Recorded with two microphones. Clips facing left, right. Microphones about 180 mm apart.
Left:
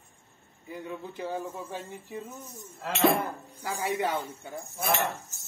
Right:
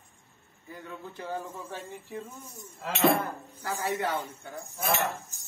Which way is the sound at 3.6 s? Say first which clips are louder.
Left 1 dB; 10° left (ahead or behind).